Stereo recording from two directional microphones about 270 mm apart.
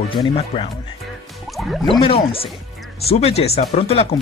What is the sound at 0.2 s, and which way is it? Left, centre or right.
Speech, centre.